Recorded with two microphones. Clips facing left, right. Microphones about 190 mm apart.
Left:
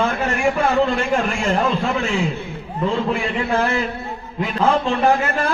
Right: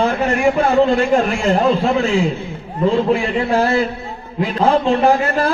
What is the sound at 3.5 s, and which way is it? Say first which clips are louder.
A man's voice: right 4 dB; 35° right (ahead or behind).